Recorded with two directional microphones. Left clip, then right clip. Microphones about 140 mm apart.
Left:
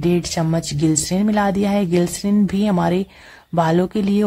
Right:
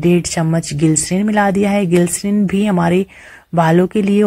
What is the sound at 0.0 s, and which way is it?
Speech, 20° right (ahead or behind).